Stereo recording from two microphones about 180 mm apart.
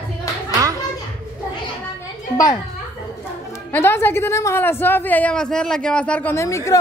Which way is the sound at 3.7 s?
15° left (ahead or behind).